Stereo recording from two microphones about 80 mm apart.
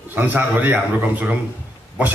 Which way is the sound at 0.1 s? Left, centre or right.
Right.